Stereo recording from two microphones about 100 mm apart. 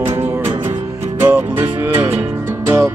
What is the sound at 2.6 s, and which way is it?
Music, 25° right (ahead or behind).